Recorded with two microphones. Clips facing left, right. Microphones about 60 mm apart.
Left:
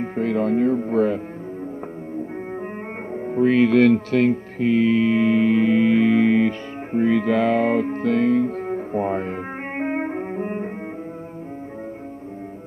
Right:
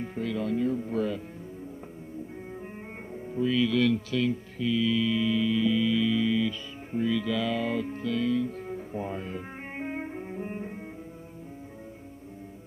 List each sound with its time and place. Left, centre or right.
0.0 s speech: left
3.1 s music: left